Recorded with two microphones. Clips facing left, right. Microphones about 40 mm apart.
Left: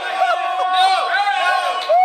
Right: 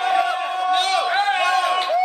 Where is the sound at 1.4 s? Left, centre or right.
Centre.